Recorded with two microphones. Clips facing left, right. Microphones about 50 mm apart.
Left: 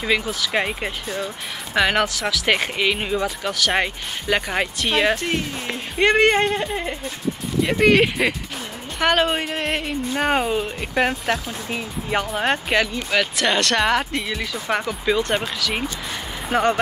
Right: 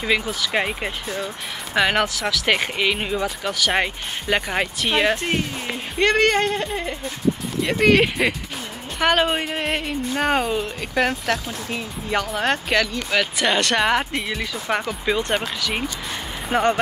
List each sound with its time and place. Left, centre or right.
0.0 s speech: centre
5.1 s speech: centre
5.9 s speech: centre
13.1 s speech: centre